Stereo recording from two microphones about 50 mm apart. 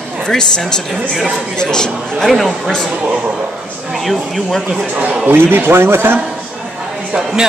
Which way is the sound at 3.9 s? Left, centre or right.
Centre.